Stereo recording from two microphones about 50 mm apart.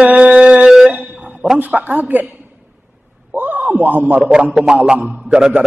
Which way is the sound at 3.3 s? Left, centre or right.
Right.